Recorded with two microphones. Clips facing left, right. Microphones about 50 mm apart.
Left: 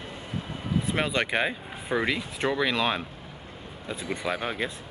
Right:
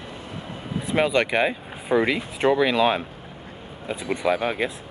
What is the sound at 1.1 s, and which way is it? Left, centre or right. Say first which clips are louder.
Speech: right 5 dB; centre.